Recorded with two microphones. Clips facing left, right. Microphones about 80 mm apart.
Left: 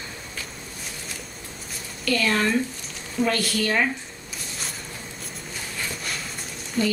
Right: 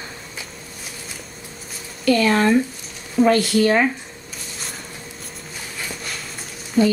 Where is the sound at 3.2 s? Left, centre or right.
Right.